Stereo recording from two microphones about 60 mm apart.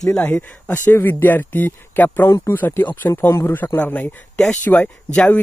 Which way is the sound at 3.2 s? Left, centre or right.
Left.